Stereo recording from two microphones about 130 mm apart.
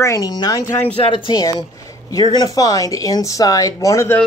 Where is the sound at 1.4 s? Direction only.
25° left (ahead or behind).